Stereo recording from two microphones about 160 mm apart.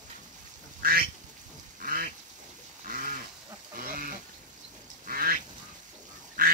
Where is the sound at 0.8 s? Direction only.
65° right (ahead or behind).